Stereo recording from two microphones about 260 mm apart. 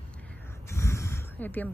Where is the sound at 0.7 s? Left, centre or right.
Centre.